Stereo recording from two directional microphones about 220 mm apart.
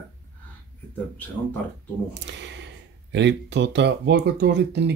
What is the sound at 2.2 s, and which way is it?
Speech, 55° right (ahead or behind).